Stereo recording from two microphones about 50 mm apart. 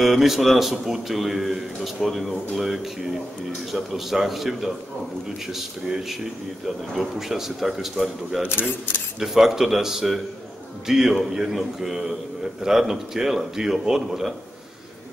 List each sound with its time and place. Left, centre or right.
0.0 s a man's voice: centre
8.5 s speech: left
9.2 s a man's voice: centre